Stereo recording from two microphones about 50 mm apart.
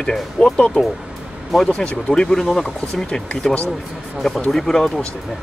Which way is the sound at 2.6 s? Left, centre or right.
Left.